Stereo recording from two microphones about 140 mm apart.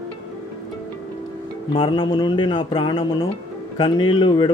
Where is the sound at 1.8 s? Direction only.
35° left (ahead or behind).